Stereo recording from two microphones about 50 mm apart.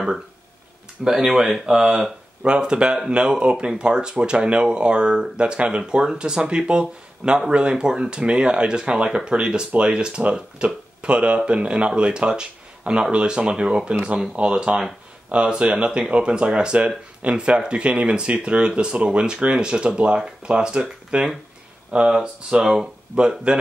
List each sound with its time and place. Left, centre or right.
1.0 s speech: centre